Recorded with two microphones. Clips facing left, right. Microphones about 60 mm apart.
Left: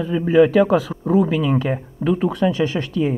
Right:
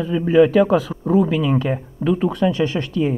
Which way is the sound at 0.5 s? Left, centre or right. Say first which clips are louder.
Even; left.